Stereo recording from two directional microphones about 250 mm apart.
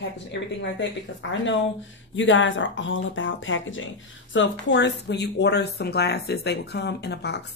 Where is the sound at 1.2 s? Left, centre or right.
Left.